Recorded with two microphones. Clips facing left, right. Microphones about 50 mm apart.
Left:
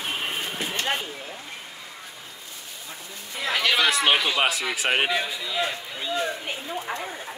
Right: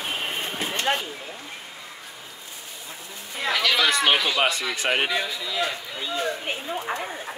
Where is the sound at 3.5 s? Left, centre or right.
Centre.